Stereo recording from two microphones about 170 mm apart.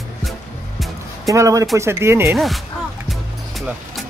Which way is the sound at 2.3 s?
Centre (ahead or behind).